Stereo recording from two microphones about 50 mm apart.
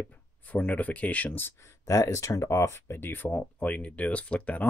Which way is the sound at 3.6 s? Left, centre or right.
Left.